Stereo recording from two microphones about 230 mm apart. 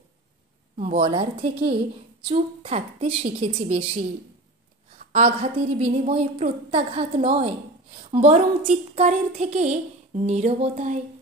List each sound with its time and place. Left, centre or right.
0.7 s a woman's voice: right